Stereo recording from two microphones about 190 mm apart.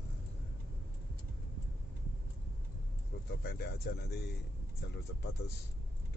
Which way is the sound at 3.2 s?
60° left (ahead or behind).